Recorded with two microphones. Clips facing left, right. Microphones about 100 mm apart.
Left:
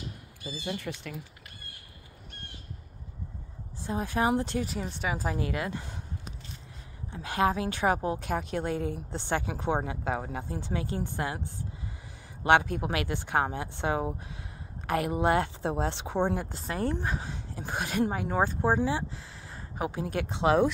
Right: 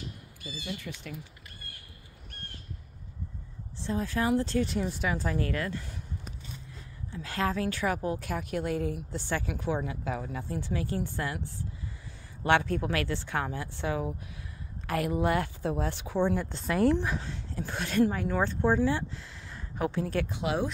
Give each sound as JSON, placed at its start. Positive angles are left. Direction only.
{"t": 0.7, "sound": "speech", "side_deg": 60}
{"t": 3.8, "sound": "speech", "side_deg": 15}
{"t": 4.6, "sound": "speech", "side_deg": 0}
{"t": 5.1, "sound": "speech", "side_deg": 10}
{"t": 7.2, "sound": "a woman's voice", "side_deg": 20}
{"t": 12.4, "sound": "a woman's voice", "side_deg": 15}
{"t": 16.7, "sound": "speech", "side_deg": -90}
{"t": 17.2, "sound": "speech", "side_deg": 15}